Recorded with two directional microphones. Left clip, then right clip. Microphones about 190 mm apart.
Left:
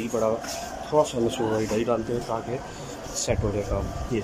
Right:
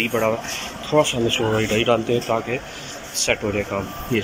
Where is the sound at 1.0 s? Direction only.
15° left (ahead or behind).